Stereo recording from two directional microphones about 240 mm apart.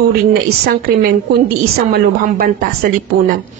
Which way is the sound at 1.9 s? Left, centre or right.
Right.